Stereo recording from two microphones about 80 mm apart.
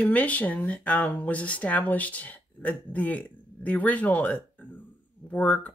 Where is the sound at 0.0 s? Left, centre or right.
Centre.